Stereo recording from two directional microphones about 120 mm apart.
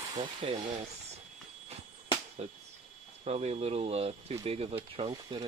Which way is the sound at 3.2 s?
65° right (ahead or behind).